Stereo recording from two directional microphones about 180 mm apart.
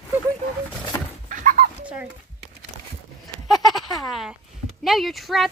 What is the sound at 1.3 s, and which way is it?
Dog, 45° right (ahead or behind).